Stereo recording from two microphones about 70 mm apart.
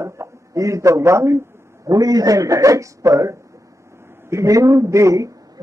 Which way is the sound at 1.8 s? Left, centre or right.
Right.